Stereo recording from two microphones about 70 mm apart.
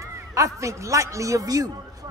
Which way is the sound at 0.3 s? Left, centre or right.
Right.